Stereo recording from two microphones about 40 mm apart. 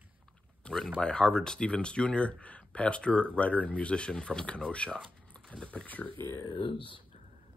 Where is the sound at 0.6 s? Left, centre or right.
Centre.